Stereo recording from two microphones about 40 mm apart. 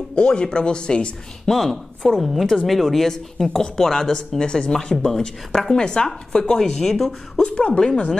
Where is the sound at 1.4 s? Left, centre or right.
Centre.